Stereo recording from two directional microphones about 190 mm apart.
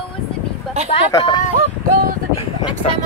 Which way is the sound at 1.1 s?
20° left (ahead or behind).